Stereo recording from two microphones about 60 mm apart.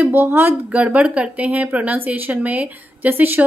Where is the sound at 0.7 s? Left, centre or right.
Right.